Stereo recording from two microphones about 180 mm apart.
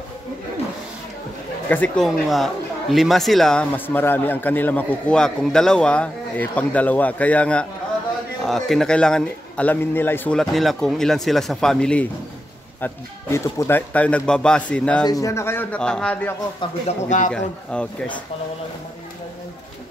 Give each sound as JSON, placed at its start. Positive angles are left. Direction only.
{"t": 1.7, "sound": "a man's voice", "side_deg": 5}
{"t": 15.0, "sound": "speech", "side_deg": 20}
{"t": 16.8, "sound": "speech", "side_deg": 45}
{"t": 17.3, "sound": "a man's voice", "side_deg": 5}